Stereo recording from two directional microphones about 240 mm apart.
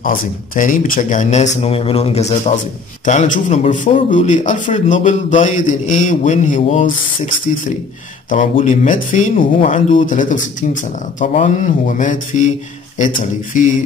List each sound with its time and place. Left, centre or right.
0.0 s speech: left